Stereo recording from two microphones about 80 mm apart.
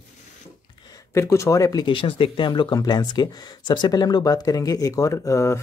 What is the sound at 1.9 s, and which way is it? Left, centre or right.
Speech, left.